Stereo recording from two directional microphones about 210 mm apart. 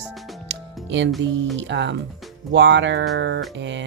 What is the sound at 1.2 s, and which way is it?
Speech, 55° right (ahead or behind).